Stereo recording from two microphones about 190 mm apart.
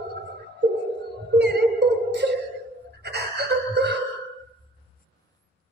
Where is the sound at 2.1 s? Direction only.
60° right (ahead or behind).